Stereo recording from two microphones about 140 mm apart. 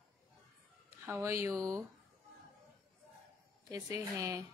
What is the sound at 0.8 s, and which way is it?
Speech, 20° right (ahead or behind).